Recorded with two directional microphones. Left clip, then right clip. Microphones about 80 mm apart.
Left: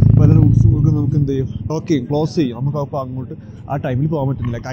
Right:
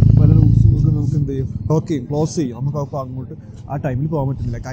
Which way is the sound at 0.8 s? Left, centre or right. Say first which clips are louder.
Left 3 dB; centre.